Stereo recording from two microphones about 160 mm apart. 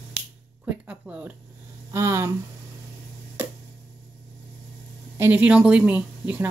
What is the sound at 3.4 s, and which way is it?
Tick-tock, 10° right (ahead or behind).